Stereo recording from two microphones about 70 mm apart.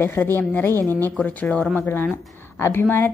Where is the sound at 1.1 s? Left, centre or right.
Centre.